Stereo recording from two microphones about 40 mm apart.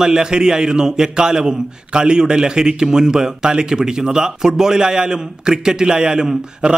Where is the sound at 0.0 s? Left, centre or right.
Centre.